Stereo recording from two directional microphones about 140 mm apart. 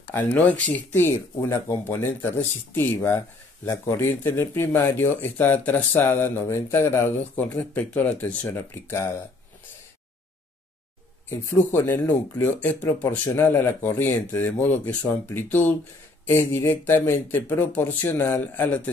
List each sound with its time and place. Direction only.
0.1 s speech: 10° left (ahead or behind)
11.2 s speech: 15° left (ahead or behind)